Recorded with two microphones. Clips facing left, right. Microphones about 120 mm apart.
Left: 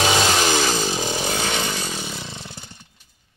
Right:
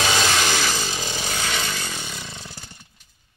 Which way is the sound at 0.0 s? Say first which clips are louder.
Left 3 dB; 20° left (ahead or behind).